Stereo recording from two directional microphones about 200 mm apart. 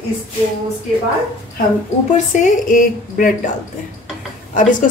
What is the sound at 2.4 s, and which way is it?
Speech, 40° left (ahead or behind).